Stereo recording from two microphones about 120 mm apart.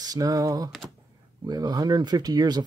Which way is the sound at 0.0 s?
30° right (ahead or behind).